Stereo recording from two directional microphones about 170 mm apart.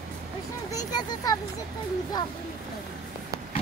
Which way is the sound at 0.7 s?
20° left (ahead or behind).